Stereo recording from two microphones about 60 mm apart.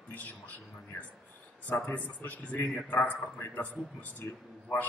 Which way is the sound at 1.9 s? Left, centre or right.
Left.